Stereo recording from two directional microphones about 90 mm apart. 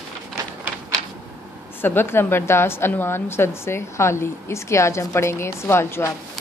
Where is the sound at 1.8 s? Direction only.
25° left (ahead or behind).